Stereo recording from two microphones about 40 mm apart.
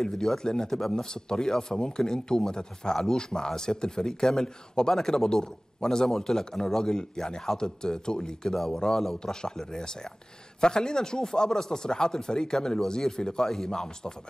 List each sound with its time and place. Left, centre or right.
0.0 s speech: centre